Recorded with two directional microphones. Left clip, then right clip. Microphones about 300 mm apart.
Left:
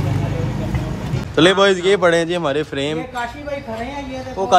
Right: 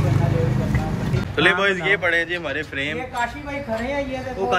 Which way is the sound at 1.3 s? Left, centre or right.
Centre.